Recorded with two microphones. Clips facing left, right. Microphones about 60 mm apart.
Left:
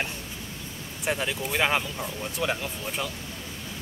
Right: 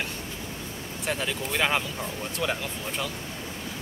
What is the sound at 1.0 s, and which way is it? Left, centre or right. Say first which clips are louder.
Speech: left 2 dB; centre.